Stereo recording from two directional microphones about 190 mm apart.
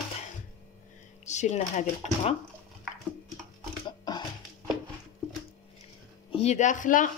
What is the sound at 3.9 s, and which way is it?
Music, 20° left (ahead or behind).